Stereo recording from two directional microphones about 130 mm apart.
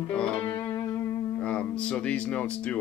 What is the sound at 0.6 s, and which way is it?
Music, 20° left (ahead or behind).